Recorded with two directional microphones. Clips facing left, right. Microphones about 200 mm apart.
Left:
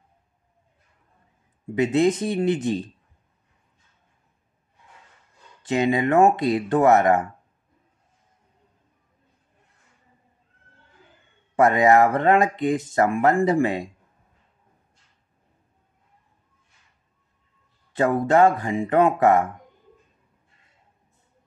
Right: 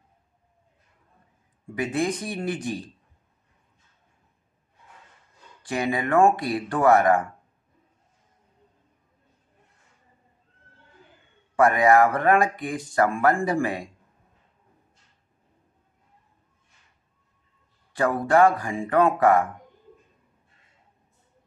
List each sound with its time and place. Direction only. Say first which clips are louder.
1.8 s speech: left 6 dB; 25° left (ahead or behind)
5.6 s speech: left 5 dB; 20° left (ahead or behind)
11.5 s speech: left 1 dB; 25° left (ahead or behind)
17.9 s speech: left 2 dB; 25° left (ahead or behind)